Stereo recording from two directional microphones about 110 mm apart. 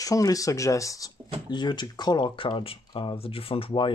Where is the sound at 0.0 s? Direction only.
30° left (ahead or behind).